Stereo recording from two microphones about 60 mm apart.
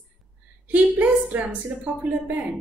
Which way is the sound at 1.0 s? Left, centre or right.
Right.